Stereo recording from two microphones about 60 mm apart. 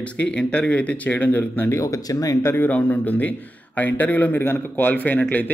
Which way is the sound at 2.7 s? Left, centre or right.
Left.